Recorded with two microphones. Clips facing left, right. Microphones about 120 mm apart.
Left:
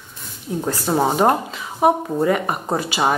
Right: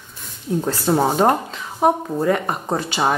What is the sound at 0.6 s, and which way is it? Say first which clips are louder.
A woman's voice: even; 15° left (ahead or behind).